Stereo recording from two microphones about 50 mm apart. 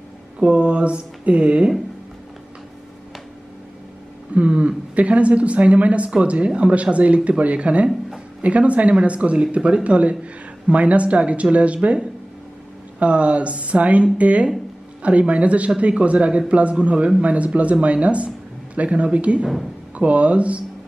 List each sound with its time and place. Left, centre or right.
0.4 s speech: right
4.3 s speech: right